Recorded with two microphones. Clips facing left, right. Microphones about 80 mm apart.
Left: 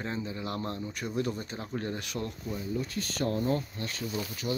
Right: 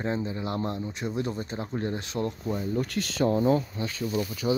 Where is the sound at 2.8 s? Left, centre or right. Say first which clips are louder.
Right 5 dB; right.